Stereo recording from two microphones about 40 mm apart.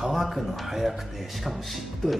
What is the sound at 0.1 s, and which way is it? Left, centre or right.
Speech, centre.